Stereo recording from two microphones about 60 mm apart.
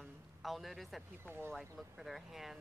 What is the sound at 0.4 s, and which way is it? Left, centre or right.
Speech, centre.